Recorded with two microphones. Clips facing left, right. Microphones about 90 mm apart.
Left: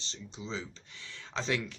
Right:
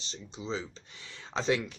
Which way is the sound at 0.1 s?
20° right (ahead or behind).